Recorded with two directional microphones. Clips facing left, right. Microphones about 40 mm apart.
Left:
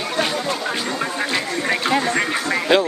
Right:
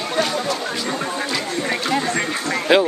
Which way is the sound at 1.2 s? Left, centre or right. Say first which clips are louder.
Left 1 dB; left.